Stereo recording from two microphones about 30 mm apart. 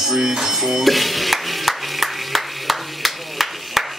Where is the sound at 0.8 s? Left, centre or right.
Centre.